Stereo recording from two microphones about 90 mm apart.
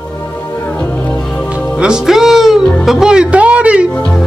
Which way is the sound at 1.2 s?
5° left (ahead or behind).